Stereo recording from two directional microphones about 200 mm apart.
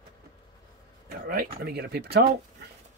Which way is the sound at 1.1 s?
45° right (ahead or behind).